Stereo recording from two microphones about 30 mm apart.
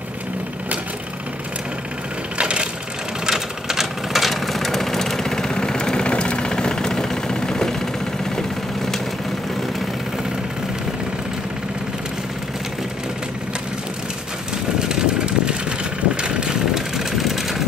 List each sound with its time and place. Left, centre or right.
2.3 s a sound: right
3.3 s vehicle: centre
14.8 s vehicle: right
16.7 s vehicle: centre